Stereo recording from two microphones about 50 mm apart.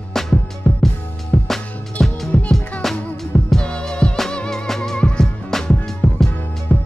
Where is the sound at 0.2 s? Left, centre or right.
Centre.